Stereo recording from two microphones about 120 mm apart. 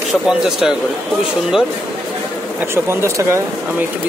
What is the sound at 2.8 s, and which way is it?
Speech, 25° right (ahead or behind).